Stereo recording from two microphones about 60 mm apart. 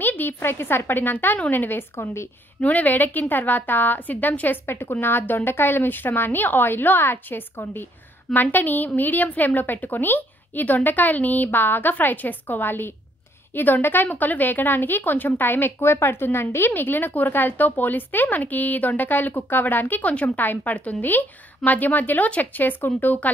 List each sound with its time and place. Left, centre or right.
0.0 s a woman's voice: left
2.6 s a woman's voice: left
4.6 s a woman's voice: left